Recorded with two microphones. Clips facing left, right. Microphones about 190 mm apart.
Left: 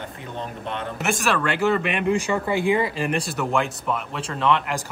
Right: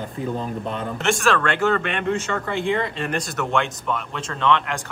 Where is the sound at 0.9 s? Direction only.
5° left (ahead or behind).